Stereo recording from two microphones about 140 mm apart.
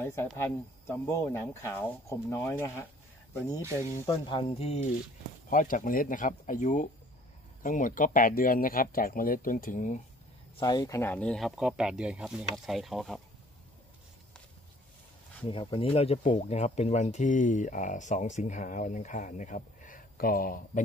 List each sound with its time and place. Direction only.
0.0 s speech: 20° left (ahead or behind)
4.3 s speech: 40° left (ahead or behind)
5.5 s speech: 75° left (ahead or behind)
10.6 s speech: 30° left (ahead or behind)
11.0 s speech: 10° left (ahead or behind)
15.5 s speech: 40° left (ahead or behind)
16.3 s speech: 55° left (ahead or behind); by 20.8 s 85° left